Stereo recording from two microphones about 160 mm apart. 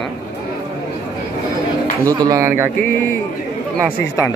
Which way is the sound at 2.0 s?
20° right (ahead or behind).